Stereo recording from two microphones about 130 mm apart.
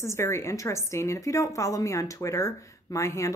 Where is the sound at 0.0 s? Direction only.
20° left (ahead or behind).